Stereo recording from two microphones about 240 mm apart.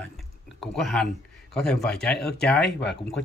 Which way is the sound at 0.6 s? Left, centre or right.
Centre.